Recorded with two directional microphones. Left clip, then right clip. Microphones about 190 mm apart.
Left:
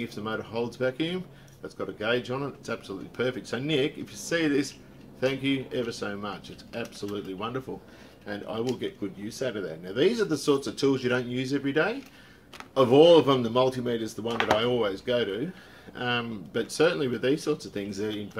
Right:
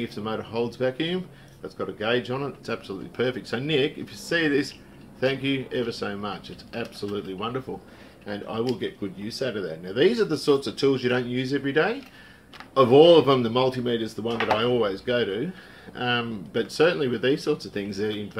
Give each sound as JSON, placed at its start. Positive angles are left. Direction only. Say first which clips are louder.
{"t": 0.1, "sound": "speech", "louder": "right 2 dB", "side_deg": 0}